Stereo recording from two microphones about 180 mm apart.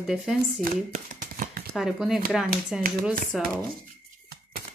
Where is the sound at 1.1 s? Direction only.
55° right (ahead or behind).